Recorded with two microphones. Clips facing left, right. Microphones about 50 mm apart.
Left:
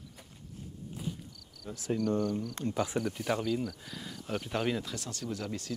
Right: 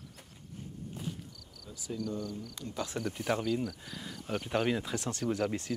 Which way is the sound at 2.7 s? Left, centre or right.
Left.